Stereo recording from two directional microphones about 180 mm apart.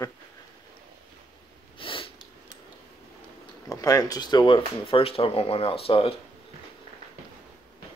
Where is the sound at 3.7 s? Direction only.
20° left (ahead or behind).